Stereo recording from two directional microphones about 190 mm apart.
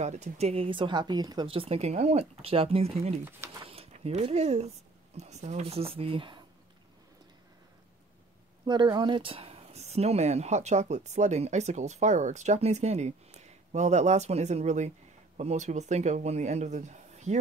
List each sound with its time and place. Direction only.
0.0 s speech: 35° right (ahead or behind)
3.3 s speech: 15° right (ahead or behind)
3.6 s speech: 30° right (ahead or behind)
8.6 s speech: 20° right (ahead or behind); by 17.4 s 40° right (ahead or behind)